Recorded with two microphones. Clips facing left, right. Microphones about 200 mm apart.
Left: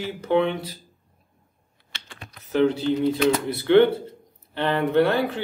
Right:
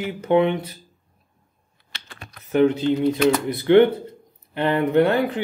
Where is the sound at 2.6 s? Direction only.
15° right (ahead or behind).